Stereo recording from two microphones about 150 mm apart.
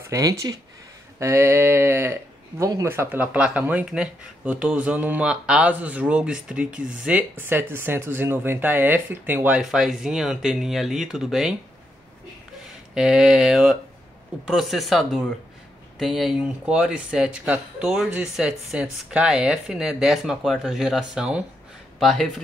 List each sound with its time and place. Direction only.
0.0 s speech: 20° right (ahead or behind)
9.6 s speech: centre (ahead or behind)
12.9 s speech: 5° right (ahead or behind)